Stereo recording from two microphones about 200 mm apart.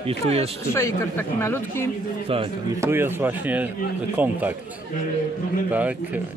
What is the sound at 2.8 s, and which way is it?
Speech, 10° right (ahead or behind).